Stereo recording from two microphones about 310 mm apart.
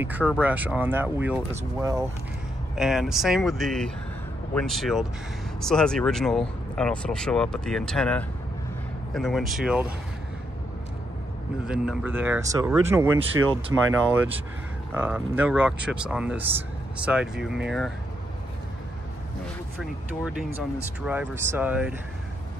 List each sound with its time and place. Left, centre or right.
0.0 s speech: centre
11.6 s speech: centre
15.0 s speech: centre
19.8 s speech: centre